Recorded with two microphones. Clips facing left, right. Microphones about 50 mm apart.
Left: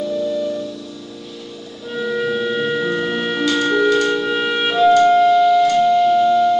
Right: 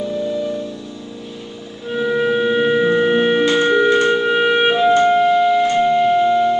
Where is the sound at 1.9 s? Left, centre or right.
Right.